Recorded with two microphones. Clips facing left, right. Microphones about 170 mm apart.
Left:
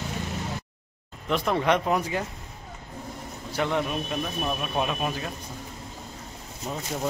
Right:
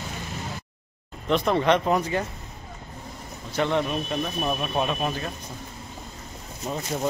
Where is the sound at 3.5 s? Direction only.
5° left (ahead or behind).